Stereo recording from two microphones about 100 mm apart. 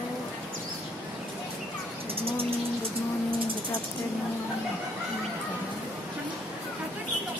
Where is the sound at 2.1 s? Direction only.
70° right (ahead or behind).